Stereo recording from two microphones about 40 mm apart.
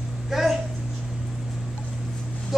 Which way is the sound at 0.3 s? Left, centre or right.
Centre.